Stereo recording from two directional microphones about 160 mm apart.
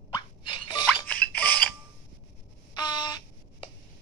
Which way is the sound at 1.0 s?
10° left (ahead or behind).